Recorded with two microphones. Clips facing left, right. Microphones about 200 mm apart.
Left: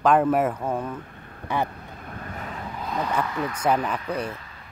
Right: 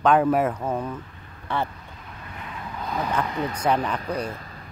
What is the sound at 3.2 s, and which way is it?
Speech, 25° right (ahead or behind).